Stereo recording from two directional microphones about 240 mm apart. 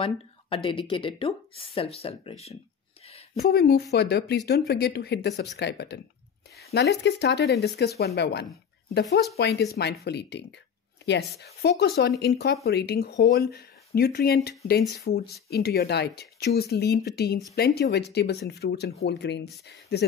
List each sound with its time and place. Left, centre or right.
0.0 s speech: left
3.1 s a sound: left
3.4 s speech: left